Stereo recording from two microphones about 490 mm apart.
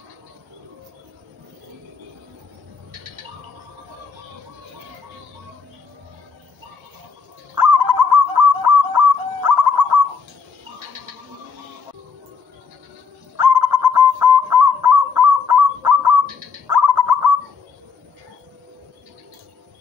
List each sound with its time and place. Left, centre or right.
7.5 s bird: right
13.4 s bird: right
13.9 s goose: right